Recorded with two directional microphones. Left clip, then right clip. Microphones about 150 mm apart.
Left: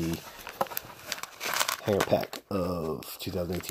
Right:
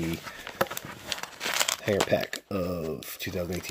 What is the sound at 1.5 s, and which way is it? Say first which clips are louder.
Crumpling: right 1 dB; centre (ahead or behind).